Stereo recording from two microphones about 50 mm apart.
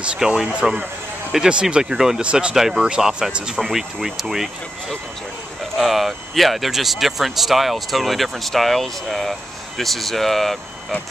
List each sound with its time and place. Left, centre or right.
0.2 s speech: centre
3.7 s speech: centre
5.8 s speech: centre